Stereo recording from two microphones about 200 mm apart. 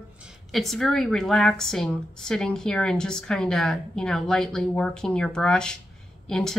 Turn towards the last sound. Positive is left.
turn(degrees=5)  # may be behind; listen again after turning